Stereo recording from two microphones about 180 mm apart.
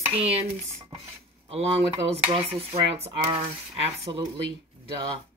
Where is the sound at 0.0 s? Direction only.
35° right (ahead or behind).